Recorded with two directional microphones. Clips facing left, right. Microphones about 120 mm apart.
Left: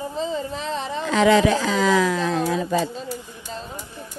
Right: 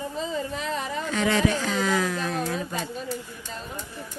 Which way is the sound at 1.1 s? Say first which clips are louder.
Left 7 dB; 90° left.